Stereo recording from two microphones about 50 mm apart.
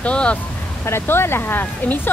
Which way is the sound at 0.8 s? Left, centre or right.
Left.